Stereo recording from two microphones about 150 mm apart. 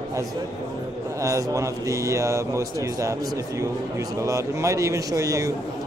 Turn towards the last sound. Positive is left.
turn(degrees=-20)  # may be behind; listen again after turning